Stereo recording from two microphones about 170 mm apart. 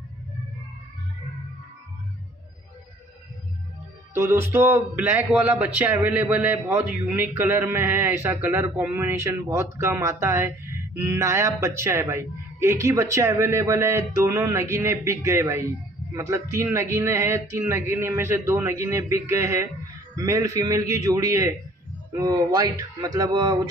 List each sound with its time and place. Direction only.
4.1 s speech: 15° right (ahead or behind)